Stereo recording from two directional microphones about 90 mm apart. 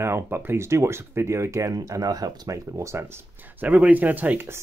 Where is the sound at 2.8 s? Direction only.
30° right (ahead or behind).